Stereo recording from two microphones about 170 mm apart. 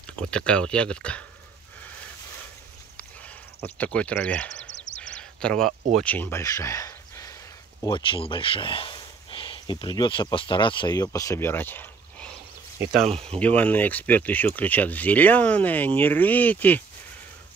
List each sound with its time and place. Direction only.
0.0 s speech: 5° left (ahead or behind)
3.0 s a sound: 10° left (ahead or behind)
5.9 s speech: 10° left (ahead or behind)
13.0 s speech: 35° right (ahead or behind)
13.4 s speech: 10° left (ahead or behind)